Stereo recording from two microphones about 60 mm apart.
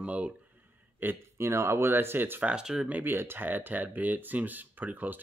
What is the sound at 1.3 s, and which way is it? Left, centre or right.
Speech, right.